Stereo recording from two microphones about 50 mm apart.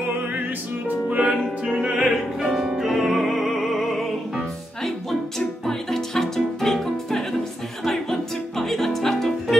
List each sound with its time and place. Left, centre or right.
1.1 s music: centre
2.0 s opera: centre
5.7 s music: centre